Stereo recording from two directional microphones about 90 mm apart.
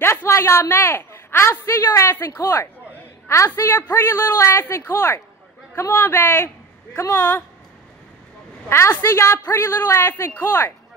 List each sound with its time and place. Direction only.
0.0 s a woman's voice: 30° left (ahead or behind)
4.3 s a woman's voice: 30° left (ahead or behind)
8.6 s a woman's voice: 30° left (ahead or behind)